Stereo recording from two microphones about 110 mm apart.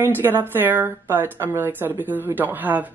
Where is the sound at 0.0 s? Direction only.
20° right (ahead or behind).